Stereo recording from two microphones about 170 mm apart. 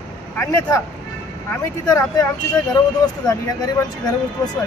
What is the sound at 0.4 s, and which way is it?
Speech, 20° left (ahead or behind).